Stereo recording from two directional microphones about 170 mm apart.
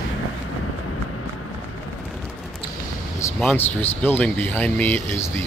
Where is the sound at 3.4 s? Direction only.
10° left (ahead or behind).